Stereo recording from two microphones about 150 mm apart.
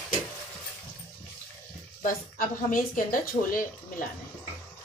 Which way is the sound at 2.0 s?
65° left (ahead or behind).